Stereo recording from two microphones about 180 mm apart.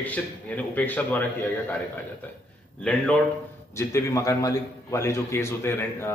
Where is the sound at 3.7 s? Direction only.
15° left (ahead or behind).